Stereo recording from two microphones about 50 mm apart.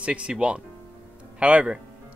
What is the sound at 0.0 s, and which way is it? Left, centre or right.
Speech, right.